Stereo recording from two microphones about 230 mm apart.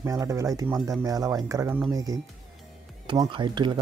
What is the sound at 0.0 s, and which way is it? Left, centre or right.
Speech, centre.